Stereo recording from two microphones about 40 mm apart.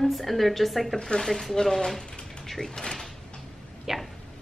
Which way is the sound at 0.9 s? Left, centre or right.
Centre.